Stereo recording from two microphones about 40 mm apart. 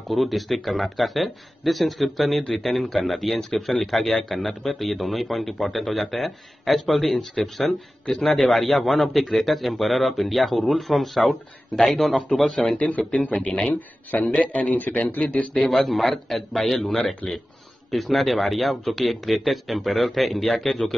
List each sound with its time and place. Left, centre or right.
0.1 s a man's voice: centre
13.3 s speech: left
13.7 s a man's voice: left
15.7 s a man's voice: centre